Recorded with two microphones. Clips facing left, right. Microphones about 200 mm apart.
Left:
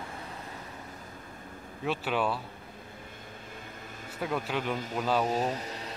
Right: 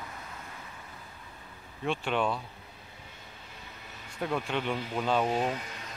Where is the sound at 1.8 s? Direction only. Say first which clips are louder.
Even; 5° left (ahead or behind).